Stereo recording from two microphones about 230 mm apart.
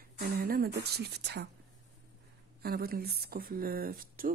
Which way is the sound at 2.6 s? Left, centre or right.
Right.